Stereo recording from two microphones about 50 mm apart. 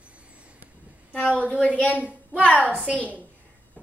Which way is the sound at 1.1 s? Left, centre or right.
Left.